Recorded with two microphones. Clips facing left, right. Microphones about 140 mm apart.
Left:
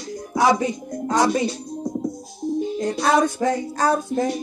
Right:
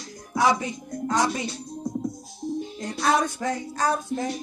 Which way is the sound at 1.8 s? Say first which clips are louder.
Left 3 dB; 20° left (ahead or behind).